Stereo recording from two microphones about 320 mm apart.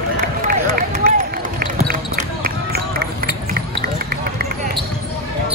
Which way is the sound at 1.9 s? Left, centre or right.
Right.